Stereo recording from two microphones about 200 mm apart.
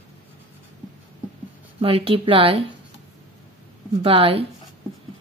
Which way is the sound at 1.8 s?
30° right (ahead or behind).